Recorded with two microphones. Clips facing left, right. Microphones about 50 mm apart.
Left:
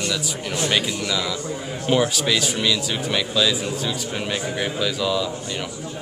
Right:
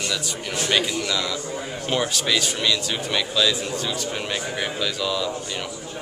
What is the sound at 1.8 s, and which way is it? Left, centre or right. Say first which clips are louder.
A man's voice: left 4 dB; centre.